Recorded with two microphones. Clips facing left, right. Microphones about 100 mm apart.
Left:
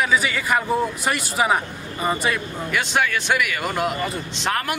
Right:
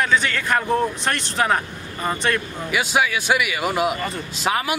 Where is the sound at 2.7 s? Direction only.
5° right (ahead or behind).